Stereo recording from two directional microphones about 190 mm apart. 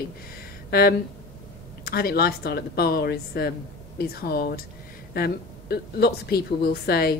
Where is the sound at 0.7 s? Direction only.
55° left (ahead or behind).